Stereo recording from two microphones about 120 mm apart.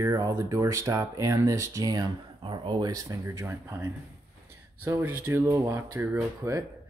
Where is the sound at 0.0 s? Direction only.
30° right (ahead or behind).